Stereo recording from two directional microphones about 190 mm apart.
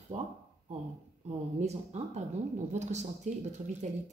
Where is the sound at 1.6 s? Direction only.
35° right (ahead or behind).